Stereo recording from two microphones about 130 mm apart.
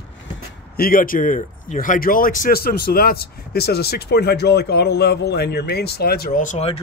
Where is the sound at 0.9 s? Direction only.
90° left.